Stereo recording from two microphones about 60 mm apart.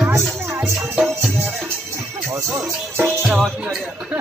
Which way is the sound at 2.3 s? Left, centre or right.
Right.